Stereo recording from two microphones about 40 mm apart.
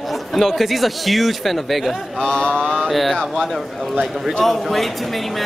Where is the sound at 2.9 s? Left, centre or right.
Centre.